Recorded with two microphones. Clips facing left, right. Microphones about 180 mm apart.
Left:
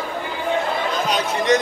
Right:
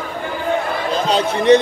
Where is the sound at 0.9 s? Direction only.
30° right (ahead or behind).